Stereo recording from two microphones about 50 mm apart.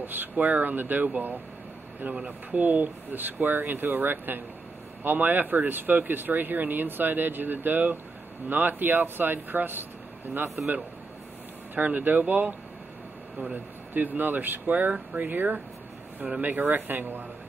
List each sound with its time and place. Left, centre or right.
0.0 s speech: right
11.7 s speech: right
13.9 s speech: right
15.1 s speech: right
16.2 s speech: right